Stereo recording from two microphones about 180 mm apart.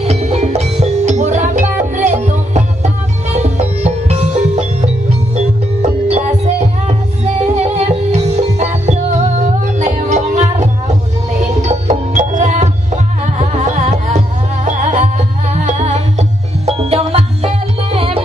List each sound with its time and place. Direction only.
0.0 s music: 35° right (ahead or behind)